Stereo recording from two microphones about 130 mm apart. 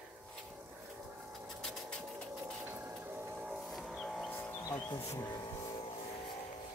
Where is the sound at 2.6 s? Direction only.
15° right (ahead or behind).